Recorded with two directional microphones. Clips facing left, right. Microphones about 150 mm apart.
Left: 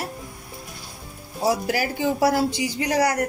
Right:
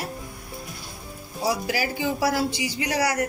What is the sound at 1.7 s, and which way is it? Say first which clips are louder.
A woman's voice: left 3 dB; 55° left (ahead or behind).